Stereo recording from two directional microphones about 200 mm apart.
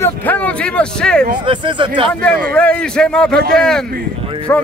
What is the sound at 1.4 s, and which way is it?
Speech, 25° right (ahead or behind).